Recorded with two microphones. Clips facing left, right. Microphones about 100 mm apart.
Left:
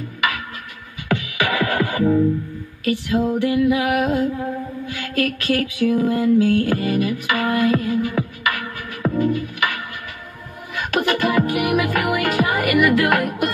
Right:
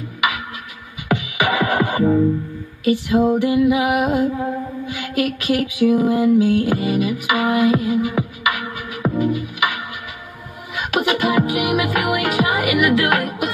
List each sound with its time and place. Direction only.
1.0 s music: 15° right (ahead or behind)